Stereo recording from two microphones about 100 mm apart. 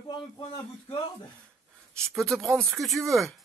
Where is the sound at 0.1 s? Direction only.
65° left (ahead or behind).